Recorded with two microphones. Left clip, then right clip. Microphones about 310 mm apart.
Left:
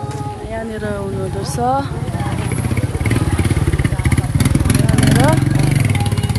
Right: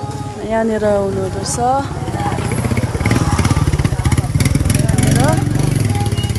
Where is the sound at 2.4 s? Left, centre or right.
Right.